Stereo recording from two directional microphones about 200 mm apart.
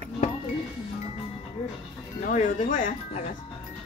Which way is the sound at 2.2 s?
40° left (ahead or behind).